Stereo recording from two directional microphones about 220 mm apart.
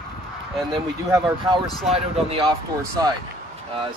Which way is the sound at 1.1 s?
15° right (ahead or behind).